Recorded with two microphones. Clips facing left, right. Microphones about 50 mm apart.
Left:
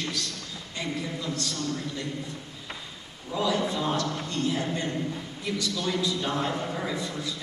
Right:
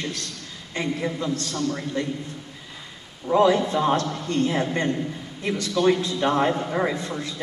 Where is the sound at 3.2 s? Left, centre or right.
Right.